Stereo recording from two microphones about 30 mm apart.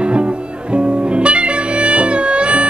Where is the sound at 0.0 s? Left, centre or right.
Right.